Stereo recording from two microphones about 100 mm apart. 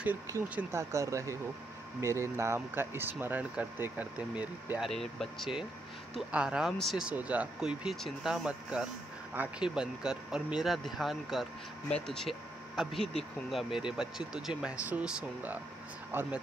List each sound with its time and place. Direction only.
0.6 s speech: 25° right (ahead or behind)
4.7 s speech: 5° left (ahead or behind)
7.1 s speech: 15° right (ahead or behind)